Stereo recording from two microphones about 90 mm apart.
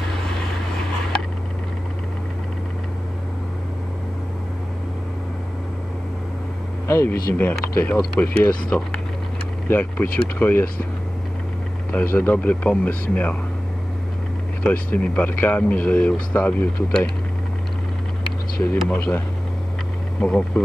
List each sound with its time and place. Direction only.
6.9 s speech: 25° left (ahead or behind)
11.9 s speech: 20° left (ahead or behind)
14.6 s speech: 20° left (ahead or behind)
18.9 s speech: 20° left (ahead or behind)